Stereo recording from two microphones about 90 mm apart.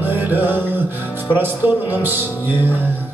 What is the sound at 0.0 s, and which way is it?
Music, 20° right (ahead or behind).